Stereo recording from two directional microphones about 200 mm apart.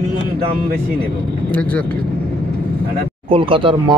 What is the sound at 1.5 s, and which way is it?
Speech, 5° left (ahead or behind).